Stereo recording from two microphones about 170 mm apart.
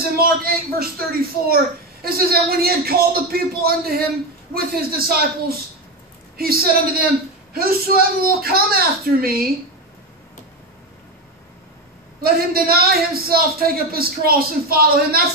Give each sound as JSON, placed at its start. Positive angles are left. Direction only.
{"t": 0.1, "sound": "a man's voice", "side_deg": -60}
{"t": 12.2, "sound": "a man's voice", "side_deg": -65}